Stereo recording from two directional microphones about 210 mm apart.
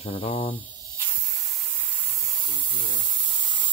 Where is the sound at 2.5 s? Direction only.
20° left (ahead or behind).